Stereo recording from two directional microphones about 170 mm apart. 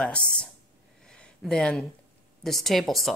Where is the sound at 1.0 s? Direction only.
5° left (ahead or behind).